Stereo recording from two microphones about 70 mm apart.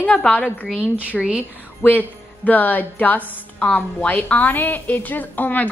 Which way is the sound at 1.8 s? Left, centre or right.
Left.